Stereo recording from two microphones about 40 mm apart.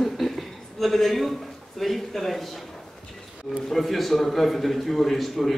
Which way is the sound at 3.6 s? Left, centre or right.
Centre.